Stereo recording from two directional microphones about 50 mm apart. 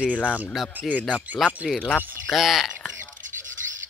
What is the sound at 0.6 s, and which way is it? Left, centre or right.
Speech, centre.